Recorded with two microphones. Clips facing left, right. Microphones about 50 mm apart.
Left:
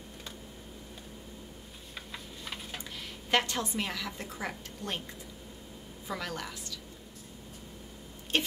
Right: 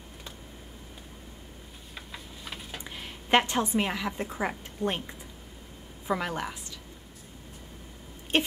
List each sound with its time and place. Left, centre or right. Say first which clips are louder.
2.0 s a sound: even; centre
2.8 s a woman's voice: right 2 dB; right
8.3 s speech: right 4 dB; right